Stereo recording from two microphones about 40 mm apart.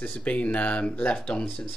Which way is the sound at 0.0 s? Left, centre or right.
Left.